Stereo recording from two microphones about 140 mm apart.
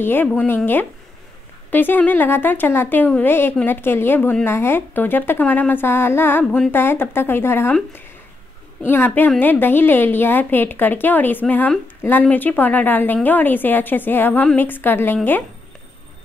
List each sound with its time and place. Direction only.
0.0 s a woman's voice: 15° left (ahead or behind)
8.8 s a woman's voice: 15° left (ahead or behind)